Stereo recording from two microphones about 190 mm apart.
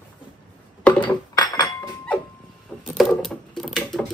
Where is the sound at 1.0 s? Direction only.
20° left (ahead or behind).